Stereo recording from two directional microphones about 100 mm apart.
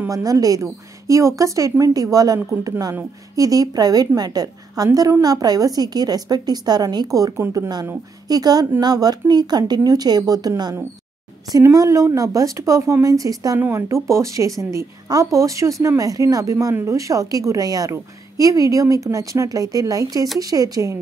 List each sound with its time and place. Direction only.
0.1 s a woman's voice: 35° right (ahead or behind)
13.6 s a woman's voice: 25° right (ahead or behind)